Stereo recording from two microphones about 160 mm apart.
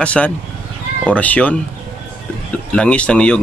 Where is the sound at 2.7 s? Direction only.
5° left (ahead or behind).